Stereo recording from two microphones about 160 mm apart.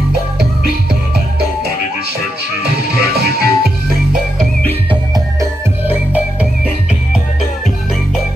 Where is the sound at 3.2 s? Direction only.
80° right.